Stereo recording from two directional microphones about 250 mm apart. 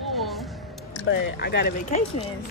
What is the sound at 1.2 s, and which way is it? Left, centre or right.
Speech, left.